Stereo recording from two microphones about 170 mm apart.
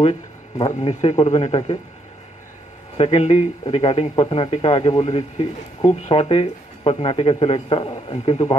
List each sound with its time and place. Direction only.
0.0 s a sound: 35° left (ahead or behind)
0.7 s speech: 40° left (ahead or behind)
3.0 s speech: 40° left (ahead or behind)